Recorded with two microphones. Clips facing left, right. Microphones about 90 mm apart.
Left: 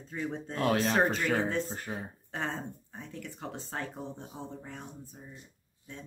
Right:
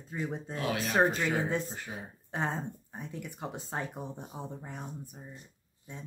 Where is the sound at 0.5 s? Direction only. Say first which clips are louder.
Left 6 dB; 50° left (ahead or behind).